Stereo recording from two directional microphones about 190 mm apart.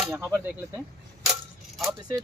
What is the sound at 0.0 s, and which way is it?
Speech, 15° right (ahead or behind).